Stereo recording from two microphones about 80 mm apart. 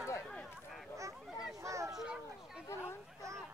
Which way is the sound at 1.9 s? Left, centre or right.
Centre.